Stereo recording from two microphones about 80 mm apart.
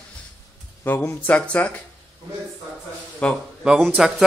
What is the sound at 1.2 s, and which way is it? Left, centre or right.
Speech, centre.